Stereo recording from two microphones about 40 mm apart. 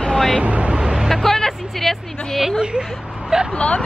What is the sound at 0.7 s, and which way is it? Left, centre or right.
Vehicle, centre.